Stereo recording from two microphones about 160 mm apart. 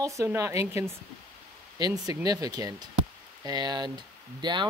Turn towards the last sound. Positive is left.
turn(degrees=-30)  # may be behind; listen again after turning